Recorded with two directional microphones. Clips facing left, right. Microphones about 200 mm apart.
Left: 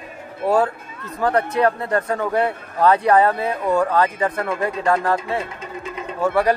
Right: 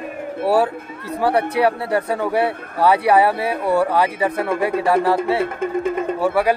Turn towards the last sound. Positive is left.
turn(degrees=-5)  # may be behind; listen again after turning